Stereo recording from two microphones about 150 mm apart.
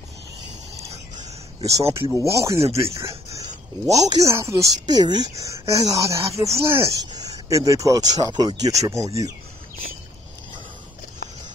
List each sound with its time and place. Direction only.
1.6 s speech: 25° right (ahead or behind)
3.9 s speech: 20° right (ahead or behind)